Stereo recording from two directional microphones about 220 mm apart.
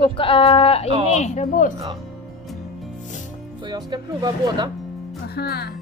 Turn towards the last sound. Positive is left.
turn(degrees=45)  # may be behind; listen again after turning